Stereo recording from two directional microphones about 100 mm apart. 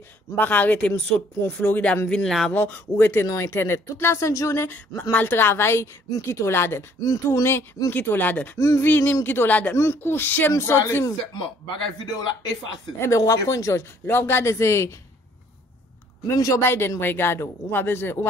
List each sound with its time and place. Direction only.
0.4 s speech: 15° left (ahead or behind)
2.5 s speech: 20° left (ahead or behind)
7.0 s speech: 35° left (ahead or behind)
7.9 s speech: 20° left (ahead or behind)
8.5 s speech: 30° left (ahead or behind)
8.8 s speech: 20° left (ahead or behind)
13.0 s speech: 30° left (ahead or behind)
16.3 s speech: 30° left (ahead or behind)